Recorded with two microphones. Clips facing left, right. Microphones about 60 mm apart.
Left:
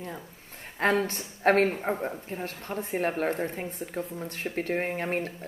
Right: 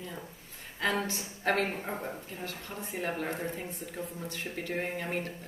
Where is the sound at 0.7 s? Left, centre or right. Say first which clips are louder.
Left 6 dB; left.